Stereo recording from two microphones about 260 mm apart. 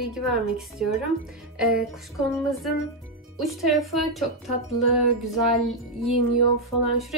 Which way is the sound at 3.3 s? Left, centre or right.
Centre.